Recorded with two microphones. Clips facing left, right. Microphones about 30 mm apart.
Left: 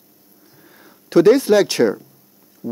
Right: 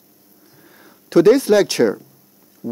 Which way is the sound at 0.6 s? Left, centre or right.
Centre.